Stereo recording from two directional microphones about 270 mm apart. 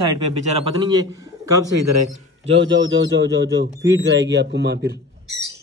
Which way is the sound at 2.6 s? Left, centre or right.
Right.